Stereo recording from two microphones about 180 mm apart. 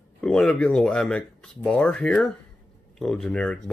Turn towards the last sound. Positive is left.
turn(degrees=5)  # may be behind; listen again after turning